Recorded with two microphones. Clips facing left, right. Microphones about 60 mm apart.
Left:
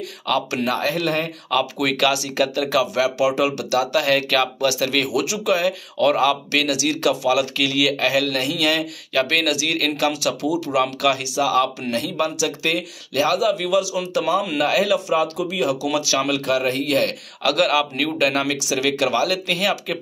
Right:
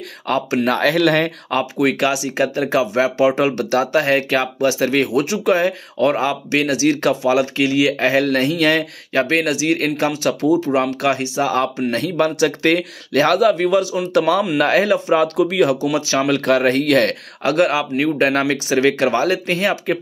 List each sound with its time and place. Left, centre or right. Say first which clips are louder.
0.3 s speech: right 2 dB; right
0.7 s speech: right 9 dB; right
1.5 s speech: right 1 dB; right
15.3 s speech: right 6 dB; right
15.9 s speech: right 3 dB; right
17.4 s speech: right 2 dB; right